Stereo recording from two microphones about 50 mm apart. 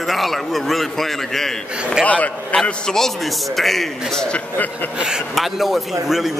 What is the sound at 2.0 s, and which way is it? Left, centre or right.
Speech, left.